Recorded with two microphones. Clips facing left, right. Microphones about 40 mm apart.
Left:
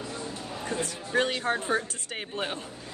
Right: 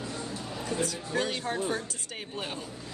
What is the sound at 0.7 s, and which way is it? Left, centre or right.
A man's voice, left.